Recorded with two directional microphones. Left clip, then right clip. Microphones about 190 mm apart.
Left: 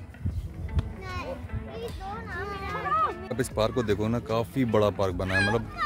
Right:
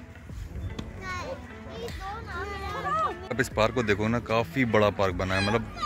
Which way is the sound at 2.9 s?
55° right (ahead or behind).